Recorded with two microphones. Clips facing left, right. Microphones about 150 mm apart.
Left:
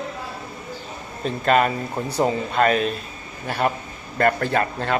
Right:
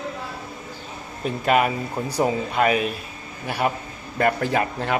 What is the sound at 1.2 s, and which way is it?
Speech, 10° right (ahead or behind).